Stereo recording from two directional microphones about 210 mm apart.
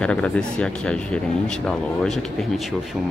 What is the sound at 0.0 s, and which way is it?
Speech, 5° left (ahead or behind).